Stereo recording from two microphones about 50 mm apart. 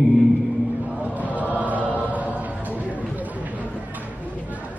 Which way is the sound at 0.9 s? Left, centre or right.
Right.